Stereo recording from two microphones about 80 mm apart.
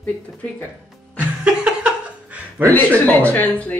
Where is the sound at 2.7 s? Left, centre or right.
Centre.